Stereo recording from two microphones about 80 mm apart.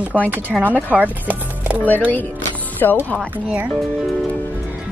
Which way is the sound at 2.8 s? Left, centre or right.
Left.